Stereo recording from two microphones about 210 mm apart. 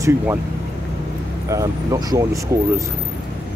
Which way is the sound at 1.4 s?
15° right (ahead or behind).